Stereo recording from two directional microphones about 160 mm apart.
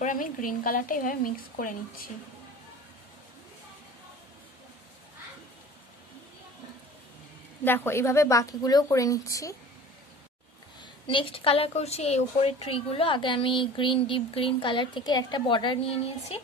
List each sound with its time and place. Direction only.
0.0 s speech: 55° left (ahead or behind)
7.6 s a woman's voice: 15° left (ahead or behind)
10.8 s a woman's voice: 30° left (ahead or behind)